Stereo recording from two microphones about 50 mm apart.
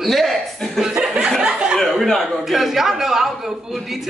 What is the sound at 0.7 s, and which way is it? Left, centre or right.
Speech, centre.